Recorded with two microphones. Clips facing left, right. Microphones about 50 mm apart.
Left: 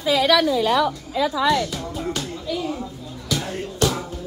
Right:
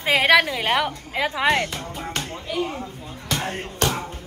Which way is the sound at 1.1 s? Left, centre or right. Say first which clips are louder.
Left 1 dB; right.